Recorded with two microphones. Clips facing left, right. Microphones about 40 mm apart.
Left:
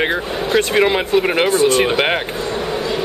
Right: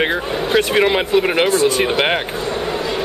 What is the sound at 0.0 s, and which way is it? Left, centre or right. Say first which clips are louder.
Speech: even; centre.